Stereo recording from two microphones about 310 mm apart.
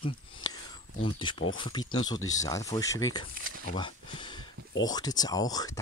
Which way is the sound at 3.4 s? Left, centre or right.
Right.